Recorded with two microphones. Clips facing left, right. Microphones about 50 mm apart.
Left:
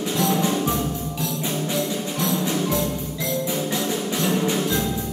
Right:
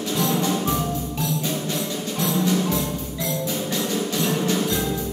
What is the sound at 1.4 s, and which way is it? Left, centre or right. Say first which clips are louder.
Music: left 1 dB; centre.